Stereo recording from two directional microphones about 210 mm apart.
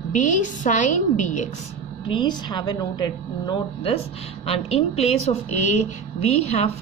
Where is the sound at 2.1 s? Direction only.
20° left (ahead or behind).